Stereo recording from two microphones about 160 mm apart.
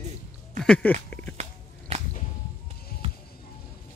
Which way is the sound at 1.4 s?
40° right (ahead or behind).